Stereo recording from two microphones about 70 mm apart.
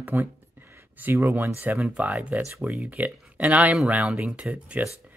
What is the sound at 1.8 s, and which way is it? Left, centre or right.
Speech, centre.